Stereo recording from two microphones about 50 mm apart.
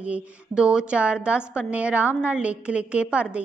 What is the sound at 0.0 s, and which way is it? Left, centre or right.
A woman's voice, right.